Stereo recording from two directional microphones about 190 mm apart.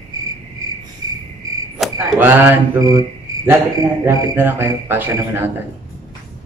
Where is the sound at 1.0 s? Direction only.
20° right (ahead or behind).